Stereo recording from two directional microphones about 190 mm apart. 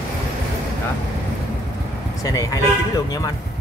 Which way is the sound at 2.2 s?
20° left (ahead or behind).